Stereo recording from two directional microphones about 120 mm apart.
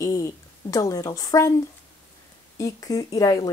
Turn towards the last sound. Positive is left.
turn(degrees=30)  # may be behind; listen again after turning